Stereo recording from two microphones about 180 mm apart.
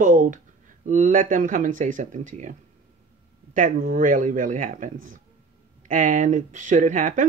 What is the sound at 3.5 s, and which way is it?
Speech, 50° right (ahead or behind).